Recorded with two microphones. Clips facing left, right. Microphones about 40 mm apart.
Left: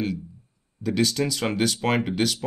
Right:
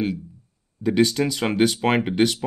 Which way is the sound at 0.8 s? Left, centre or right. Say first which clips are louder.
Right 4 dB; centre.